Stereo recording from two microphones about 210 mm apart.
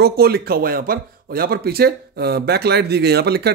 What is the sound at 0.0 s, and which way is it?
Speech, 45° right (ahead or behind).